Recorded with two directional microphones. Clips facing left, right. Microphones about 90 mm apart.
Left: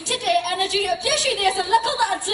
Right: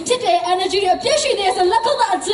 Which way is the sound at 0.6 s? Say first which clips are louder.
Right 7 dB; 20° right (ahead or behind).